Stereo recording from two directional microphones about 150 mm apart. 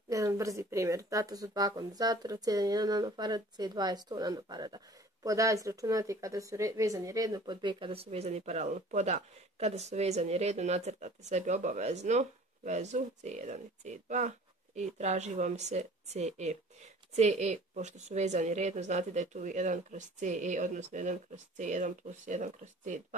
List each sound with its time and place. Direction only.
0.1 s a woman's voice: 20° right (ahead or behind); by 22.9 s 55° right (ahead or behind)